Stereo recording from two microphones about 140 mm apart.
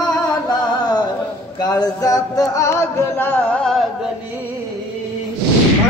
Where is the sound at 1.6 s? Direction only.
30° left (ahead or behind); by 4.1 s centre (ahead or behind).